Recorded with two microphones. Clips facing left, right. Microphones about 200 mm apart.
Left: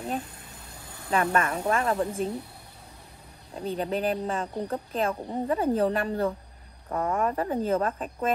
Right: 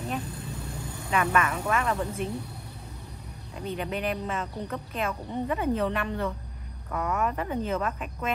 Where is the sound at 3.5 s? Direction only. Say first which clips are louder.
Left 3 dB; 35° left (ahead or behind).